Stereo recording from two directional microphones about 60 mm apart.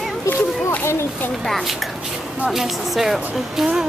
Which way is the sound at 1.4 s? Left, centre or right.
Centre.